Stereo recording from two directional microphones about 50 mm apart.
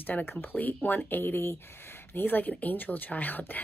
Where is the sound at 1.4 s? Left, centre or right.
Left.